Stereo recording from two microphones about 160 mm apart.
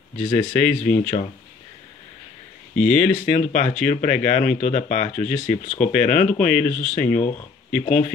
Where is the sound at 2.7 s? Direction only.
5° left (ahead or behind).